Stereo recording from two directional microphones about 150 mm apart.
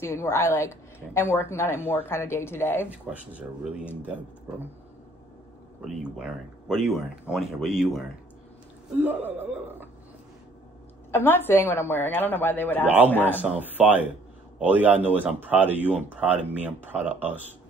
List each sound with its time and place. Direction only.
0.0 s a woman's voice: 15° left (ahead or behind)
2.9 s speech: 10° right (ahead or behind)
6.7 s speech: 5° right (ahead or behind)
9.0 s speech: 10° right (ahead or behind)
11.1 s a woman's voice: 15° left (ahead or behind)
12.8 s speech: 10° right (ahead or behind)
13.1 s a woman's voice: 15° left (ahead or behind)
13.4 s speech: 10° right (ahead or behind)